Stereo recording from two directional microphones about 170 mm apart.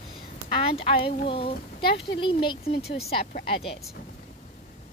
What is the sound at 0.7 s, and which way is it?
Speech, 35° left (ahead or behind).